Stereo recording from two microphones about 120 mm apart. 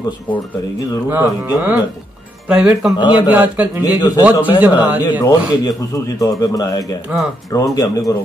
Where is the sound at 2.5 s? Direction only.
10° right (ahead or behind).